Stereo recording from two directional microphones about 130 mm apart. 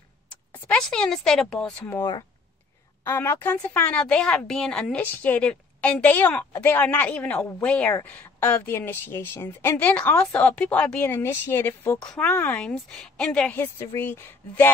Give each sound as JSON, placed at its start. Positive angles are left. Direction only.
{"t": 0.5, "sound": "speech", "side_deg": 10}
{"t": 3.0, "sound": "speech", "side_deg": 20}